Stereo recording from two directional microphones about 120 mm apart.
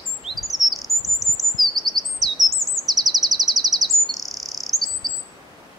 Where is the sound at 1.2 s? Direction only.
Centre (ahead or behind).